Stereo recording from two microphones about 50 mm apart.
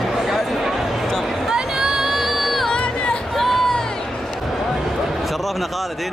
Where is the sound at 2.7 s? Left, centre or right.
Centre.